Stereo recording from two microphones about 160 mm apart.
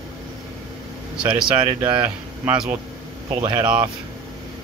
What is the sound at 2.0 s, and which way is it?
Speech, 10° right (ahead or behind).